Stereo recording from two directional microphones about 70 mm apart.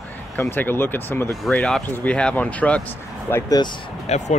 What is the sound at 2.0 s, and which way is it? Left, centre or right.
Speech, centre.